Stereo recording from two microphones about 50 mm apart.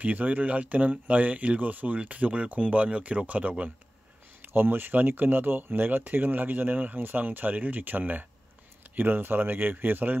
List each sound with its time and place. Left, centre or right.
0.0 s speech: right
4.4 s speech: right